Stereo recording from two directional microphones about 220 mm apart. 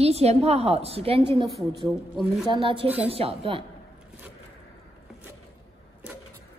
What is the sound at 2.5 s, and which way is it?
A woman's voice, 25° right (ahead or behind).